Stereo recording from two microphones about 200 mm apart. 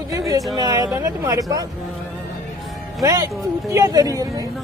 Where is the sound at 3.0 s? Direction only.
15° right (ahead or behind).